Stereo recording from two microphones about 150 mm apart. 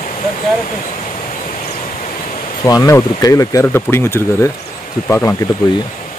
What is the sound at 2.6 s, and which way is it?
Speech, 25° left (ahead or behind).